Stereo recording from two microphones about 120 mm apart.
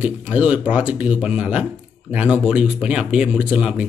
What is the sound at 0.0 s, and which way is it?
Speech, 10° right (ahead or behind).